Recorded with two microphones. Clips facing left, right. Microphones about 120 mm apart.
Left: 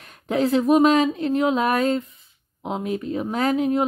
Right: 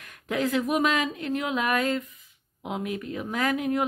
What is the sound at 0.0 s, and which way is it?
Speech, 30° left (ahead or behind).